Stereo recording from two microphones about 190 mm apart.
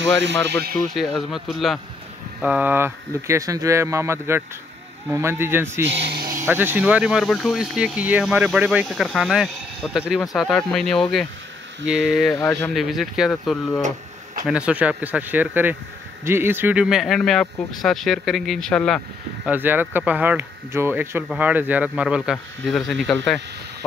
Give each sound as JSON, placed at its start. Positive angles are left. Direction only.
{"t": 0.2, "sound": "speech", "side_deg": -70}
{"t": 0.7, "sound": "speech", "side_deg": 0}
{"t": 5.9, "sound": "speech", "side_deg": -65}
{"t": 6.3, "sound": "speech", "side_deg": -10}
{"t": 13.7, "sound": "a sound", "side_deg": -40}
{"t": 14.4, "sound": "speech", "side_deg": -5}
{"t": 19.4, "sound": "speech", "side_deg": -10}